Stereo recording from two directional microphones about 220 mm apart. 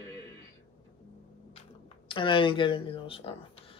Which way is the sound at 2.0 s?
20° left (ahead or behind).